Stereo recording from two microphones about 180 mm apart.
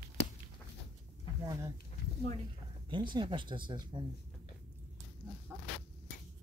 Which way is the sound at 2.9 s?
25° right (ahead or behind).